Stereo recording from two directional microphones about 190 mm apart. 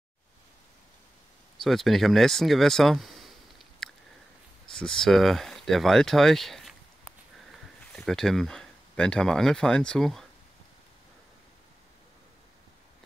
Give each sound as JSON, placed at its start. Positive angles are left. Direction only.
{"t": 1.6, "sound": "speech", "side_deg": 0}
{"t": 7.9, "sound": "speech", "side_deg": 0}